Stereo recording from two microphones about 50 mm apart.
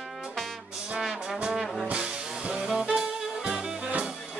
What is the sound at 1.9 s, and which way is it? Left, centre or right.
Music, right.